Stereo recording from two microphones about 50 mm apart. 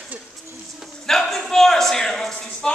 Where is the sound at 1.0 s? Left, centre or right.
Centre.